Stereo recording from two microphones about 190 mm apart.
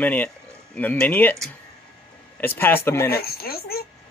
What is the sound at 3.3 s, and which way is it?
Speech, 55° left (ahead or behind).